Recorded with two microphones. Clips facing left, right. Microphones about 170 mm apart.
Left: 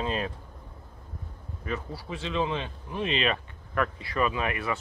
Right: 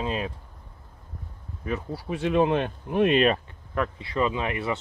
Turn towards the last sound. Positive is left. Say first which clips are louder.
# right 2 dB
turn(degrees=-25)  # may be behind; listen again after turning